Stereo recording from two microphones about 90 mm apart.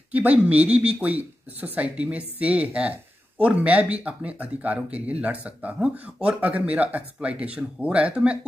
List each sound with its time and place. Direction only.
0.1 s speech: 15° right (ahead or behind)